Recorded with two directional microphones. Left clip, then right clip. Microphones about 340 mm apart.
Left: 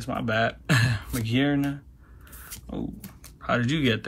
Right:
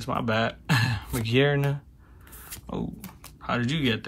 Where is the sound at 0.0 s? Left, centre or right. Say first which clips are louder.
Left 1 dB; centre.